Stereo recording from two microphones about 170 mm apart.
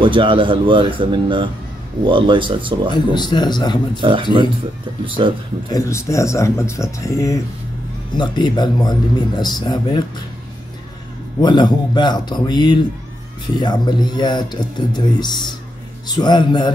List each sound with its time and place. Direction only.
0.0 s speech: 30° right (ahead or behind)
2.9 s speech: 25° left (ahead or behind)
4.0 s speech: 30° right (ahead or behind)
5.7 s speech: 20° left (ahead or behind)
11.4 s speech: 25° left (ahead or behind)